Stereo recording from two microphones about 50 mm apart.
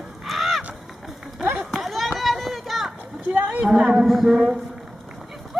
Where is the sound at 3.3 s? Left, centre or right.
Right.